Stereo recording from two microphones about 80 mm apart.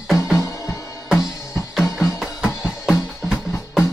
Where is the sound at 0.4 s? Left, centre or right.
Left.